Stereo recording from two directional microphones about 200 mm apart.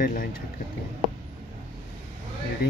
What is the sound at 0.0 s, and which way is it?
Speech, 45° left (ahead or behind).